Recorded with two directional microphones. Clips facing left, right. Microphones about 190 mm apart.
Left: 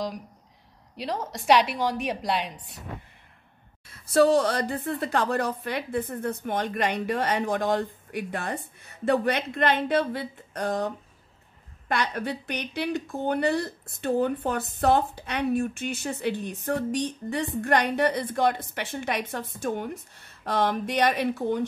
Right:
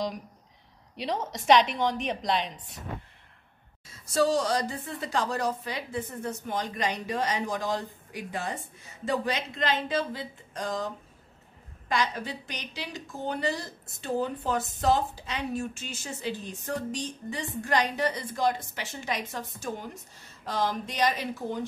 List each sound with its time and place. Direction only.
0.9 s a woman's voice: 5° left (ahead or behind)
3.8 s a woman's voice: 60° left (ahead or behind)
11.9 s a woman's voice: 60° left (ahead or behind)